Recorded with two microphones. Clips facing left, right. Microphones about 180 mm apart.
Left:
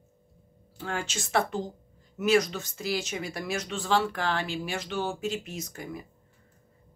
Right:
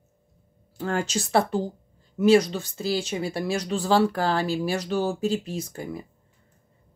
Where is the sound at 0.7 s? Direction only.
40° right (ahead or behind).